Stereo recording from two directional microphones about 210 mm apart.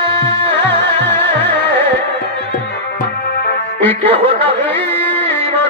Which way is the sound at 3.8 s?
10° left (ahead or behind).